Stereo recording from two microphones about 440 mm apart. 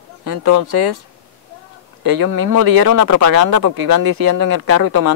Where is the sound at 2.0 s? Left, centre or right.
Right.